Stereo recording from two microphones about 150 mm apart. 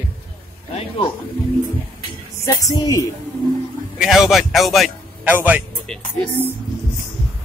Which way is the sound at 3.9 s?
Centre (ahead or behind).